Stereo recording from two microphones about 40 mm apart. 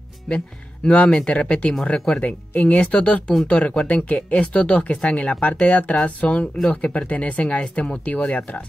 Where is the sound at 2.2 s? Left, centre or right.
Left.